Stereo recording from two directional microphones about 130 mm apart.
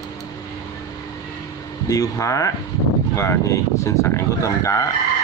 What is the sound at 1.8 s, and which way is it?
Speech, 25° left (ahead or behind).